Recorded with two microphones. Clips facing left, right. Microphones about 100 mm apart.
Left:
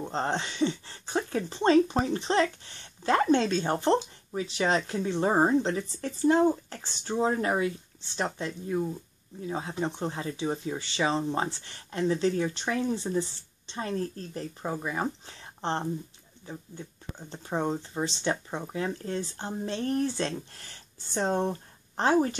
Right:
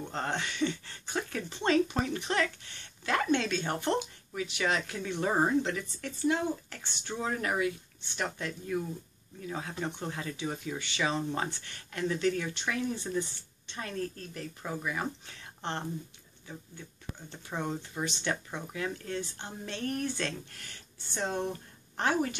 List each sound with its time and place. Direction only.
0.0 s speech: 25° left (ahead or behind)